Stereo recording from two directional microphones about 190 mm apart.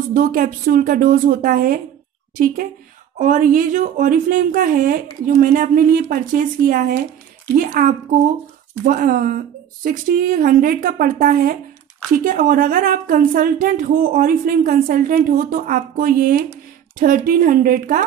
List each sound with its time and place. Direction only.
0.1 s a woman's voice: 50° right (ahead or behind)